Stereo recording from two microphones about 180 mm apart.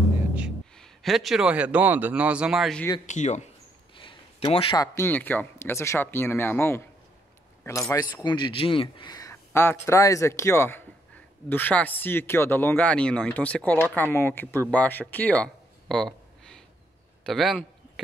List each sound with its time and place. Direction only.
0.7 s a man's voice: centre (ahead or behind)
3.1 s speech: 40° left (ahead or behind)
3.9 s a sound: 30° left (ahead or behind)
4.7 s speech: 15° left (ahead or behind)
7.9 s speech: 20° left (ahead or behind)
14.7 s a sound: 10° left (ahead or behind)